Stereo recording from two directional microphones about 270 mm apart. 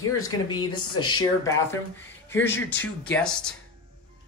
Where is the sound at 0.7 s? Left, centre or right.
Centre.